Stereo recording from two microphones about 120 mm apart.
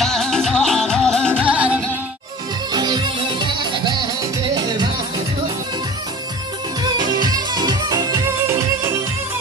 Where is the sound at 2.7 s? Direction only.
35° right (ahead or behind).